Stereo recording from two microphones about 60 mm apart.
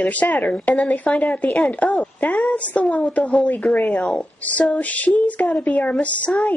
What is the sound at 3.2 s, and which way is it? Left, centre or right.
A woman's voice, centre.